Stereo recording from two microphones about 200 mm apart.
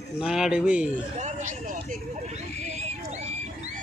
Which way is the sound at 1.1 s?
40° right (ahead or behind).